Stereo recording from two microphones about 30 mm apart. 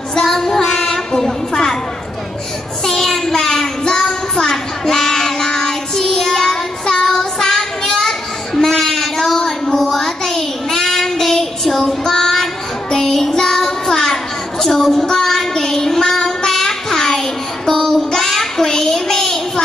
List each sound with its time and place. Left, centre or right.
0.1 s child singing: centre
2.8 s child singing: centre